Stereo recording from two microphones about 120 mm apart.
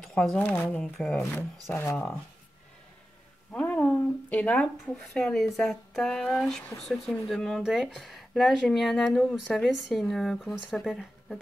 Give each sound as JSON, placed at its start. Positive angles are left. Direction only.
{"t": 0.0, "sound": "speech", "side_deg": 5}
{"t": 1.2, "sound": "speech", "side_deg": 20}
{"t": 3.5, "sound": "a sound", "side_deg": 10}
{"t": 5.0, "sound": "speech", "side_deg": 5}